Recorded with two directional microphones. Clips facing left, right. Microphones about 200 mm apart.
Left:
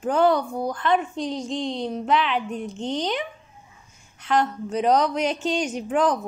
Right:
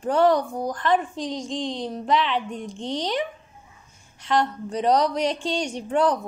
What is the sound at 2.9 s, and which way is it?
Speech, 35° right (ahead or behind).